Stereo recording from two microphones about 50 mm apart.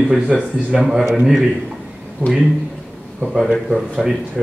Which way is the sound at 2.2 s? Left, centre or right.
Right.